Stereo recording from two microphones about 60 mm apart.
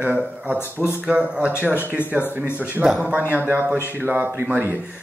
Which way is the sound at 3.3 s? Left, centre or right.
Right.